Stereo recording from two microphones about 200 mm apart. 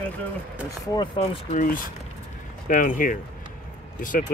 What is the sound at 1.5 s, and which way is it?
Speech, 40° left (ahead or behind).